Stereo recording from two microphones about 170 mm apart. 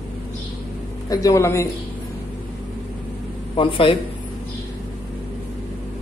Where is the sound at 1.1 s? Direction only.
20° left (ahead or behind).